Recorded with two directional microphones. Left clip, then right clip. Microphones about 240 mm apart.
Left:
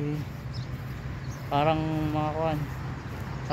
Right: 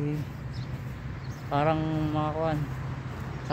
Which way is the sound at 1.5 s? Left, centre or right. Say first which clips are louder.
Left 1 dB; centre.